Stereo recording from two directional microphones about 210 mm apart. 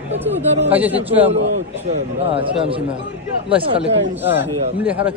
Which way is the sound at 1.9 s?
25° right (ahead or behind).